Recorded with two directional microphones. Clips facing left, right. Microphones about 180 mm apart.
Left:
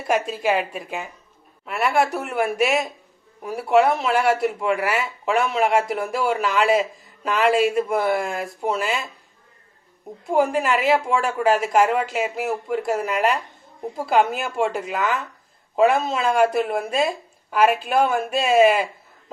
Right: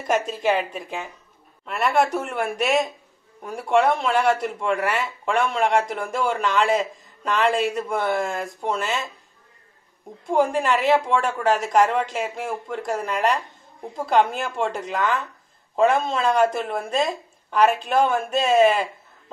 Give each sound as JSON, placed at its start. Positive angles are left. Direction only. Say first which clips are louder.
{"t": 0.0, "sound": "speech", "louder": "even", "side_deg": 5}
{"t": 10.2, "sound": "speech", "louder": "left 1 dB", "side_deg": 5}